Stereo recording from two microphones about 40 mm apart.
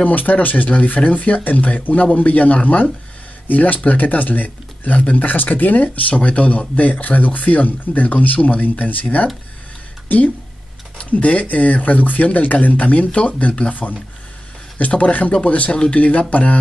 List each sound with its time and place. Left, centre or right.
0.0 s speech: left
14.8 s speech: left